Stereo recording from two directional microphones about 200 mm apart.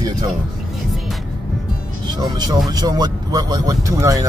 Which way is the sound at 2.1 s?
20° right (ahead or behind).